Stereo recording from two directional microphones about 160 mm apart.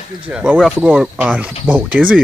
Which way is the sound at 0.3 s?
5° right (ahead or behind).